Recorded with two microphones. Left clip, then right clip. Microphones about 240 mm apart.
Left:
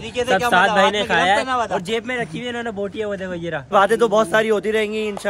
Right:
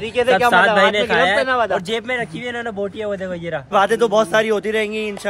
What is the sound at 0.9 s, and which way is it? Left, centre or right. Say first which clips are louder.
Speech: right 2 dB; centre.